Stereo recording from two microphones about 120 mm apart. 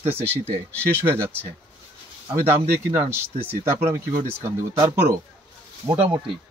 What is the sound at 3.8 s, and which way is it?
Speech, 90° right.